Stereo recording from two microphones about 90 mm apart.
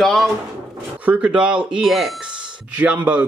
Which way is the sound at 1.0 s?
15° right (ahead or behind).